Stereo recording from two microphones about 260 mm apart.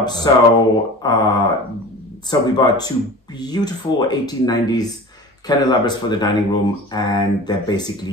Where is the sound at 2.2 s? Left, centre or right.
Centre.